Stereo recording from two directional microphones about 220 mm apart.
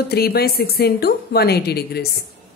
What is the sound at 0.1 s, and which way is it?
A woman's voice, 45° left (ahead or behind).